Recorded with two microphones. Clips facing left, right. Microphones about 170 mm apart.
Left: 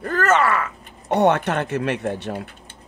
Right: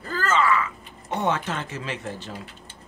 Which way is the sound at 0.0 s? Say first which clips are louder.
Left 5 dB; 70° left (ahead or behind).